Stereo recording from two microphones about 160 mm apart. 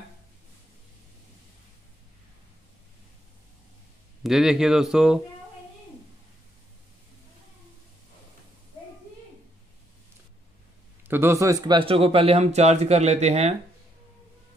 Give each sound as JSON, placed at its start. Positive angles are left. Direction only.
{"t": 4.2, "sound": "speech", "side_deg": -5}
{"t": 11.1, "sound": "speech", "side_deg": -15}